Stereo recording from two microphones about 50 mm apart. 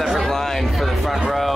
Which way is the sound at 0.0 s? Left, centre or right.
Centre.